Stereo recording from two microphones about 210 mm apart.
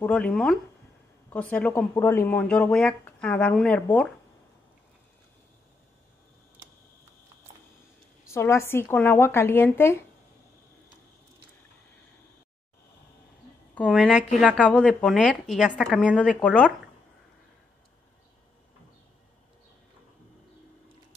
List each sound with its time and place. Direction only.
0.0 s a woman's voice: 5° left (ahead or behind)
8.3 s speech: 10° left (ahead or behind)
13.7 s a woman's voice: centre (ahead or behind)
14.7 s a woman's voice: 5° left (ahead or behind)